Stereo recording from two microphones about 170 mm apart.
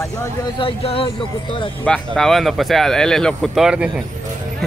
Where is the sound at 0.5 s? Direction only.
35° left (ahead or behind).